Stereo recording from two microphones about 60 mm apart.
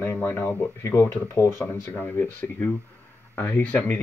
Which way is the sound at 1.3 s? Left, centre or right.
Left.